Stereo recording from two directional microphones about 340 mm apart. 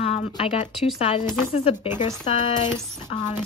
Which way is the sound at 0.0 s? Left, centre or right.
Centre.